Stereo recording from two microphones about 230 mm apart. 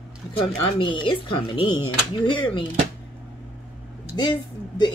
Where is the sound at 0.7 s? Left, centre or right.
Left.